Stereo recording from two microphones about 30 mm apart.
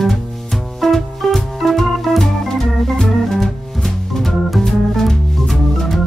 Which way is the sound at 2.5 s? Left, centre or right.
Centre.